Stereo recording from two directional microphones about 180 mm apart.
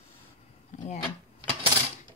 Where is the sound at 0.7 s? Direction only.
40° left (ahead or behind).